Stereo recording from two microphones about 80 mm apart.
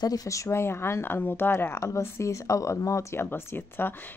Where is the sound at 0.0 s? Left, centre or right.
Left.